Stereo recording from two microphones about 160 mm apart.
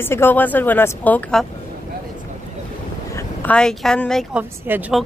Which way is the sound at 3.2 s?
10° left (ahead or behind).